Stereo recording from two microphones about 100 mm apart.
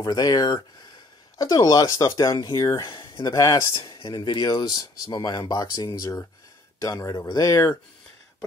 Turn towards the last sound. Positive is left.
turn(degrees=35)  # may be behind; listen again after turning